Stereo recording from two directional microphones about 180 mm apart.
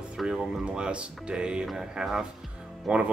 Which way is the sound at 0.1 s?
Centre (ahead or behind).